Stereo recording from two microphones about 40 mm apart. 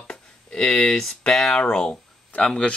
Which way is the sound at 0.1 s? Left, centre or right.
Centre.